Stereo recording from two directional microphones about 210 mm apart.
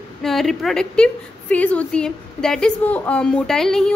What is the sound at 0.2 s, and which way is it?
A woman's voice, centre (ahead or behind).